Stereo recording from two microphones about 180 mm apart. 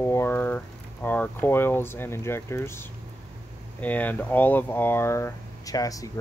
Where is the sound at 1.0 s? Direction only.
10° left (ahead or behind).